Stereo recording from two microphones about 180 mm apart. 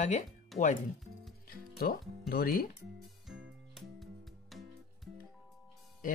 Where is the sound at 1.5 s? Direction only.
55° left (ahead or behind).